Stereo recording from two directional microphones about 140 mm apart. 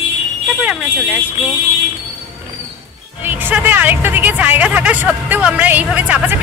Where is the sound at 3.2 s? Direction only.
15° right (ahead or behind).